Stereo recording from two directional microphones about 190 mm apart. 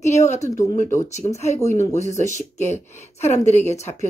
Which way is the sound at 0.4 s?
15° left (ahead or behind).